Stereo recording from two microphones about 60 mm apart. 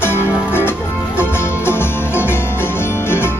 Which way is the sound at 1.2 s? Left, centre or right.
Left.